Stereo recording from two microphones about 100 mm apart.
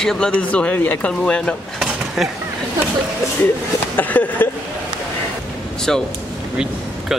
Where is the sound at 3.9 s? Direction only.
20° left (ahead or behind).